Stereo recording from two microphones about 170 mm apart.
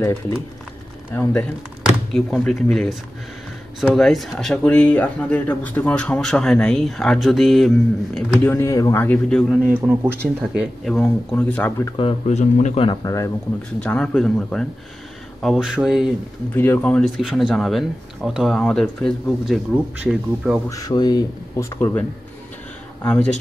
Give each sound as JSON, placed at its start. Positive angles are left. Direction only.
{"t": 0.0, "sound": "a man's voice", "side_deg": 15}
{"t": 1.9, "sound": "speech", "side_deg": 0}
{"t": 8.5, "sound": "a man's voice", "side_deg": 20}
{"t": 9.7, "sound": "speech", "side_deg": -10}
{"t": 12.0, "sound": "speech", "side_deg": 40}
{"t": 12.8, "sound": "speech", "side_deg": 25}
{"t": 13.8, "sound": "speech", "side_deg": 5}
{"t": 16.5, "sound": "a man's voice", "side_deg": 15}
{"t": 17.2, "sound": "speech", "side_deg": -5}
{"t": 20.7, "sound": "speech", "side_deg": 20}
{"t": 23.0, "sound": "a man's voice", "side_deg": 5}